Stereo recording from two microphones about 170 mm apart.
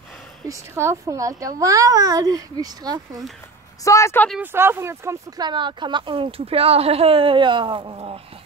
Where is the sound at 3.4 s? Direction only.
15° left (ahead or behind).